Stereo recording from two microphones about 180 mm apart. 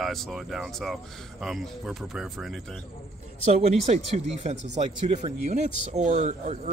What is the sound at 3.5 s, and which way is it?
Speech, 35° right (ahead or behind).